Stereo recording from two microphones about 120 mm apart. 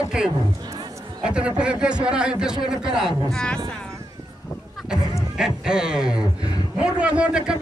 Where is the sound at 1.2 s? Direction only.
10° right (ahead or behind).